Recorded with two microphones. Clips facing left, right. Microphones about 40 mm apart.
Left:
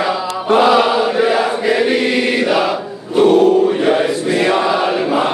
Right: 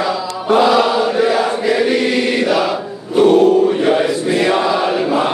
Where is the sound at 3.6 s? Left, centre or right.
Centre.